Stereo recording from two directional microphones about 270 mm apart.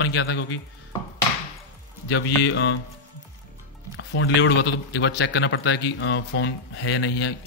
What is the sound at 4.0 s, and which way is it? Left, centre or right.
A man's voice, left.